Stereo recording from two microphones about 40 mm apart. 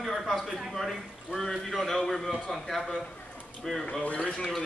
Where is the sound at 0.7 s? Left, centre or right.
Centre.